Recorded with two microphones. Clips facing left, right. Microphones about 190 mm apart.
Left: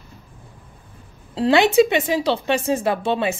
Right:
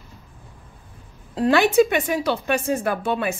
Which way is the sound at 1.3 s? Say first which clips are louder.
Left 2 dB; 25° left (ahead or behind).